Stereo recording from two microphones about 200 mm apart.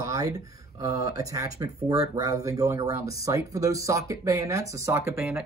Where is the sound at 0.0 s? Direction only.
15° right (ahead or behind).